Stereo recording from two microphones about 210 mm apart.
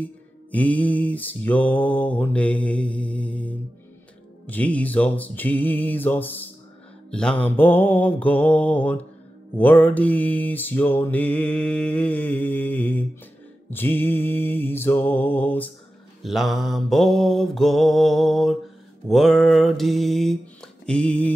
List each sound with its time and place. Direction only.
0.0 s music: 5° left (ahead or behind)
16.2 s mantra: centre (ahead or behind)